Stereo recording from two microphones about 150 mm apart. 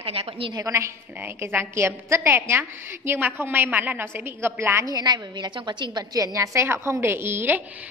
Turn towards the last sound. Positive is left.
turn(degrees=-15)  # may be behind; listen again after turning